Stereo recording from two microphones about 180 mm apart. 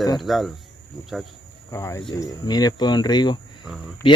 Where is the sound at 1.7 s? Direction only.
15° left (ahead or behind).